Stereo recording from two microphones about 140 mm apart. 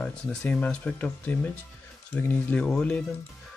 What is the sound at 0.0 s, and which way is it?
Speech, 5° left (ahead or behind).